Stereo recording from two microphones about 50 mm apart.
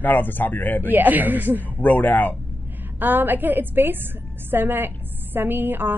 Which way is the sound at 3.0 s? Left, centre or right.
Right.